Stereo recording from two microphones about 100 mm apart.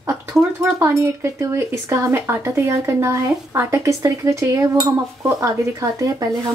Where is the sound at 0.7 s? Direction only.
30° right (ahead or behind).